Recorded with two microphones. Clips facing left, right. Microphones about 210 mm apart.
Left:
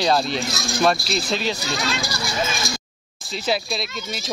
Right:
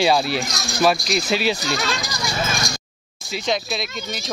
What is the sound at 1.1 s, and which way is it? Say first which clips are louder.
Speech: right 3 dB; 10° right (ahead or behind).